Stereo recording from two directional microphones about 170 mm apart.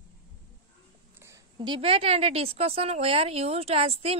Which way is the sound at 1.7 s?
35° right (ahead or behind).